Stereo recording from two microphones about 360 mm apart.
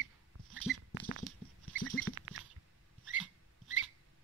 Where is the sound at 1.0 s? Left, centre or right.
Right.